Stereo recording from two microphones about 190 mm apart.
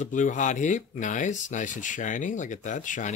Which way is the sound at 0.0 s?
40° left (ahead or behind).